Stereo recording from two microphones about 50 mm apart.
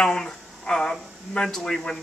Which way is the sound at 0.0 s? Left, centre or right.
Centre.